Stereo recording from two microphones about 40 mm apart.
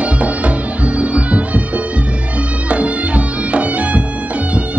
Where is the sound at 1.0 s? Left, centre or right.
Right.